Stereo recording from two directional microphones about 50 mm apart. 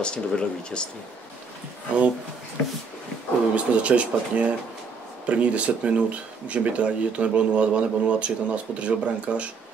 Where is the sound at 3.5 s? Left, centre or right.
Right.